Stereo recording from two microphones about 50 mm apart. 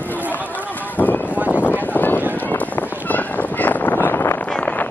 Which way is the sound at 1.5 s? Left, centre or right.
Left.